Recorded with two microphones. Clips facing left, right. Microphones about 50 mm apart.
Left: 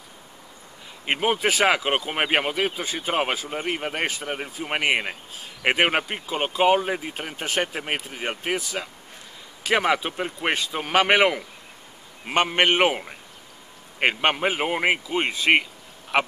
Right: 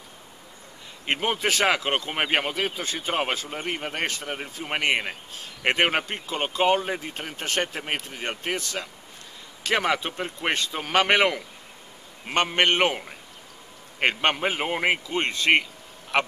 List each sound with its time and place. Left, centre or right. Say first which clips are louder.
1.0 s speech: left 3 dB; centre